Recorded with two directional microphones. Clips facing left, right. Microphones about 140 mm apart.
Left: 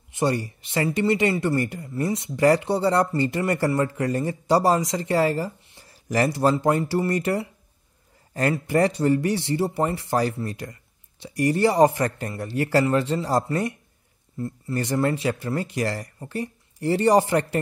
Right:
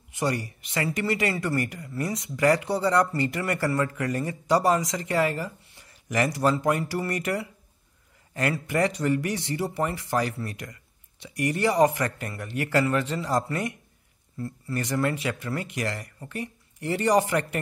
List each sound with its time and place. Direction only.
0.1 s speech: 30° left (ahead or behind)